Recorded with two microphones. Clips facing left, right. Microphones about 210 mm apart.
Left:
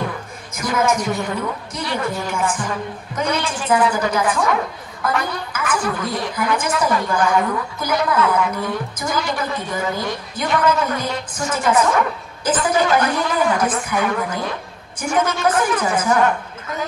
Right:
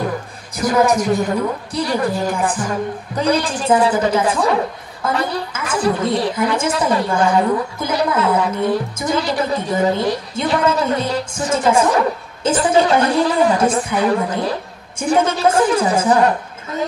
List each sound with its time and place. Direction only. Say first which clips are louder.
0.6 s a woman's voice: right 4 dB; 35° right (ahead or behind)